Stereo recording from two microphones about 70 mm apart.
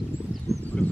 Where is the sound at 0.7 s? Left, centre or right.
Centre.